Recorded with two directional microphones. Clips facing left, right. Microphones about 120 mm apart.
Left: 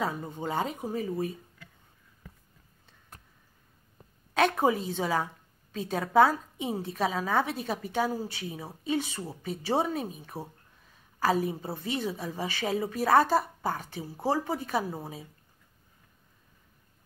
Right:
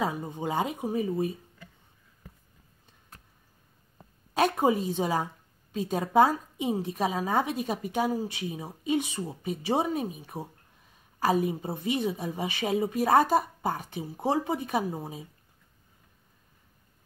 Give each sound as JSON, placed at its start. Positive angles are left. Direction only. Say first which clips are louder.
{"t": 0.0, "sound": "a woman's voice", "louder": "right 2 dB", "side_deg": -15}
{"t": 4.3, "sound": "a woman's voice", "louder": "right 1 dB", "side_deg": -10}